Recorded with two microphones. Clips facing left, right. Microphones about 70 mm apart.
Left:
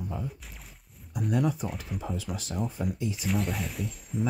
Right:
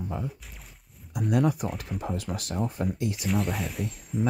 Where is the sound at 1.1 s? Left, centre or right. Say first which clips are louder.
Right 3 dB; right.